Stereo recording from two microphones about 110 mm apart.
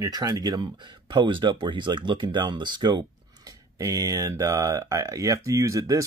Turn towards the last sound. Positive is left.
turn(degrees=-30)  # may be behind; listen again after turning